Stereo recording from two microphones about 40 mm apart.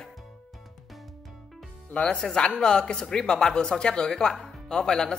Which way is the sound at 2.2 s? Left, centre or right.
Left.